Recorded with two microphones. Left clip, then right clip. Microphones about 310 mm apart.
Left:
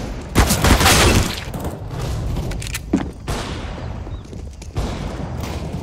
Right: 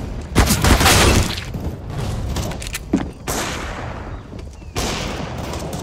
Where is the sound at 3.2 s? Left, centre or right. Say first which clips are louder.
Right 4 dB; right.